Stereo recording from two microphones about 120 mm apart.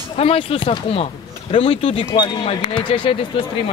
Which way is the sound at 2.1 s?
40° left (ahead or behind).